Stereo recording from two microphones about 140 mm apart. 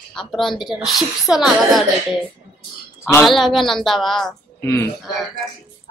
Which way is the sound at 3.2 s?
Centre (ahead or behind).